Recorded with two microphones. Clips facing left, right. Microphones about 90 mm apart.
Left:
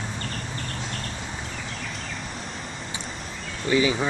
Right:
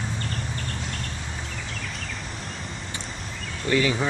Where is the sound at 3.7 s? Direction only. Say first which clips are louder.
Left 1 dB; 10° left (ahead or behind).